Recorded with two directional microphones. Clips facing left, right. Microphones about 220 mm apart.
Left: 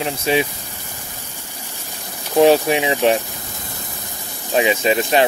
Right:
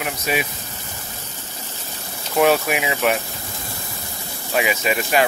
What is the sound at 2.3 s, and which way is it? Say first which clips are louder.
Speech: left 4 dB; 30° left (ahead or behind).